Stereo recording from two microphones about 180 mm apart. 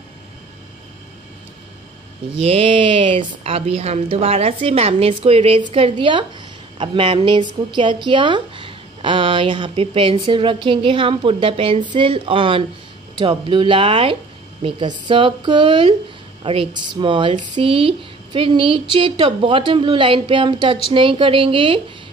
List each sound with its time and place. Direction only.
2.4 s a woman's voice: 30° right (ahead or behind)